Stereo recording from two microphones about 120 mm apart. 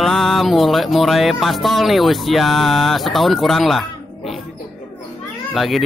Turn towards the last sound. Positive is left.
turn(degrees=0)  # may be behind; listen again after turning